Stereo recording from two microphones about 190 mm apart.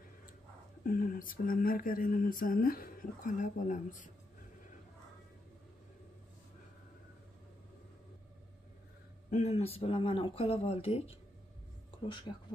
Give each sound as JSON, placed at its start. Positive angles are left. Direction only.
{"t": 0.8, "sound": "speech", "side_deg": 45}
{"t": 9.3, "sound": "speech", "side_deg": 35}